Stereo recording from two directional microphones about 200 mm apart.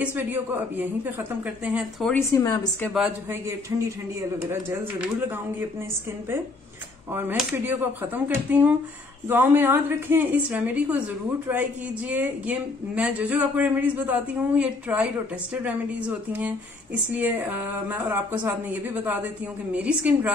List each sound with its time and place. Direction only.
0.0 s speech: 10° right (ahead or behind)
2.1 s a woman's voice: 15° left (ahead or behind)
2.9 s a woman's voice: 5° right (ahead or behind)
3.7 s speech: 15° right (ahead or behind)
7.1 s speech: 10° right (ahead or behind)
12.1 s speech: 5° right (ahead or behind)